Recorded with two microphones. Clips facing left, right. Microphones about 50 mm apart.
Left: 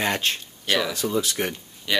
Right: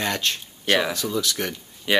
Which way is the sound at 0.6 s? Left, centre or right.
Right.